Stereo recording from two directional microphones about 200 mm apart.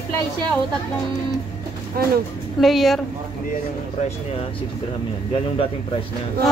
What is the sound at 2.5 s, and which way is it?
Speech, centre (ahead or behind).